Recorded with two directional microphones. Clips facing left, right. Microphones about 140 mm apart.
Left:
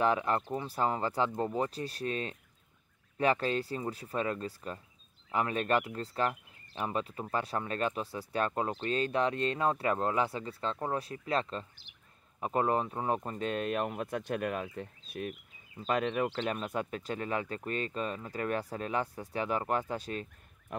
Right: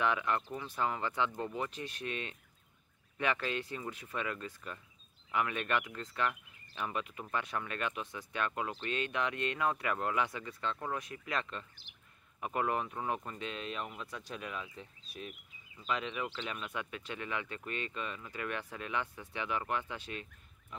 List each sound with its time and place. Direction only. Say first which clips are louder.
0.0 s speech: left 4 dB; 35° left (ahead or behind)
13.5 s speech: left 10 dB; 55° left (ahead or behind)